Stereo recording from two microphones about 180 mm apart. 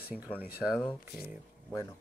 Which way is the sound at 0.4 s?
10° right (ahead or behind).